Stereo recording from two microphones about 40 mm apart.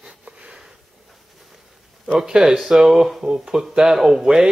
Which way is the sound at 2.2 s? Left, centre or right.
Centre.